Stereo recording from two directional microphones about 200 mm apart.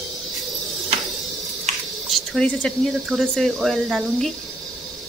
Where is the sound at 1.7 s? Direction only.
35° right (ahead or behind).